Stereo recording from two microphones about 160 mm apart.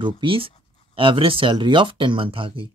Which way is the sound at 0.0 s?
35° right (ahead or behind).